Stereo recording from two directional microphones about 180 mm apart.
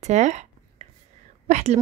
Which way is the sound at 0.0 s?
40° right (ahead or behind).